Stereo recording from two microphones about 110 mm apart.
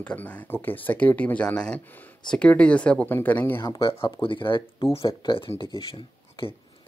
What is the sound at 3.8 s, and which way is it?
Speech, 50° left (ahead or behind).